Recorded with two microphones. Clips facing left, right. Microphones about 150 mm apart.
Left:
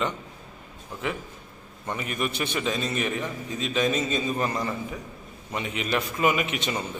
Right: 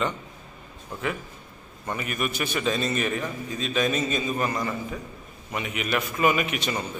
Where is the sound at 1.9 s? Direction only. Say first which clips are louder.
Even; 25° left (ahead or behind).